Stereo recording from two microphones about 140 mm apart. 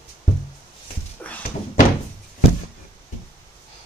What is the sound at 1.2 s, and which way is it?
Door, 10° left (ahead or behind).